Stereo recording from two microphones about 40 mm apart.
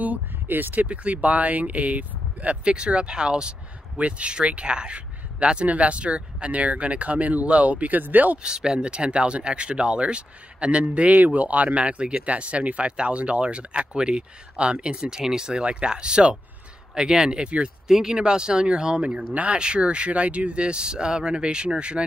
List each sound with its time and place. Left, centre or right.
0.0 s speech: right
0.8 s speech: right
8.4 s speech: centre
11.1 s speech: right
17.8 s speech: centre